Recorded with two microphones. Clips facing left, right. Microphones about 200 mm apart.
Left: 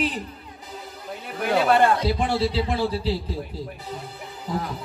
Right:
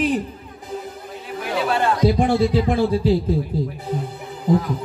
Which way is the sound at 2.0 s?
50° right (ahead or behind).